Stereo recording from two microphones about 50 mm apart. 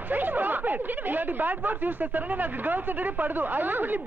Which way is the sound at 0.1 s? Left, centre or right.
Right.